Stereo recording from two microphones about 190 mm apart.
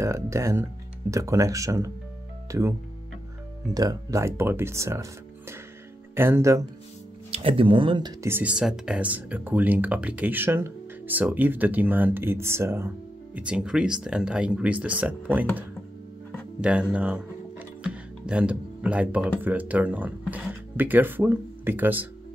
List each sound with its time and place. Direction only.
0.0 s speech: 15° right (ahead or behind)
3.7 s speech: 15° right (ahead or behind)
6.1 s speech: 10° right (ahead or behind)
7.2 s speech: 30° right (ahead or behind)
8.3 s speech: 10° right (ahead or behind)
16.9 s music: 5° right (ahead or behind)
19.4 s speech: 10° right (ahead or behind)